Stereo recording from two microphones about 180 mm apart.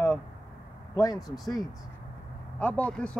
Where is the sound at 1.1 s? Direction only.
Centre (ahead or behind).